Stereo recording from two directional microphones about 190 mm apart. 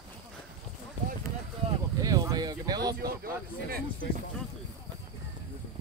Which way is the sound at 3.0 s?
50° right (ahead or behind).